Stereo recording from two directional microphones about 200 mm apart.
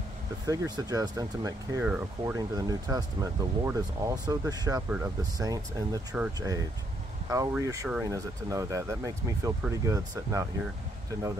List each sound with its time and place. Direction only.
0.5 s speech: 20° right (ahead or behind)
1.8 s speech: 10° right (ahead or behind)